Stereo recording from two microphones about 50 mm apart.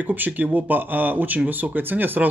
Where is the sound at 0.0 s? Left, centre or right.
Right.